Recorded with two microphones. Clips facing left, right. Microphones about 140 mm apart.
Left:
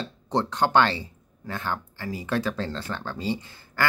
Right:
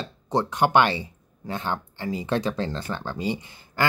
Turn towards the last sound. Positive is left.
turn(degrees=-20)  # may be behind; listen again after turning